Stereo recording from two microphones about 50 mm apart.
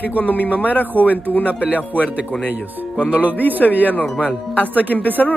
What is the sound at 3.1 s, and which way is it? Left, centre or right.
Speech, right.